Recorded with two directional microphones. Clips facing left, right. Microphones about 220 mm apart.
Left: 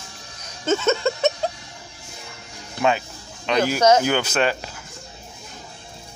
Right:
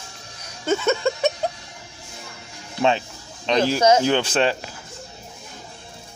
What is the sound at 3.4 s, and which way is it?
Speech, 30° right (ahead or behind).